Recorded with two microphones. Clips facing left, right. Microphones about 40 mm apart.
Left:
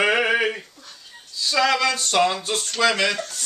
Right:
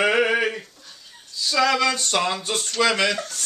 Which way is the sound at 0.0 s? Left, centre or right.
Centre.